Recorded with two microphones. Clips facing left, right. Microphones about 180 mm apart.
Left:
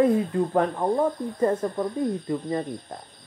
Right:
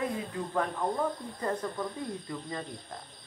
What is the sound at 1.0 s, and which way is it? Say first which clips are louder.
Speech: left 9 dB; 35° left (ahead or behind).